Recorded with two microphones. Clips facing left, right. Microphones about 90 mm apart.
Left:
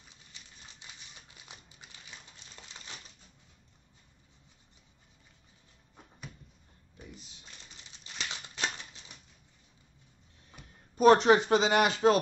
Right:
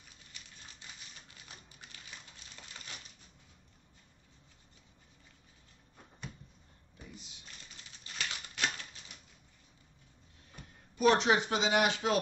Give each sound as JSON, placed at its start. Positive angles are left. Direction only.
{"t": 0.3, "sound": "a sound", "side_deg": 20}
{"t": 8.0, "sound": "scissors", "side_deg": 20}
{"t": 11.0, "sound": "speech", "side_deg": 40}